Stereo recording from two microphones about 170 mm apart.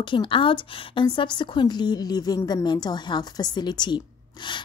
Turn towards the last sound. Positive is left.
turn(degrees=25)  # may be behind; listen again after turning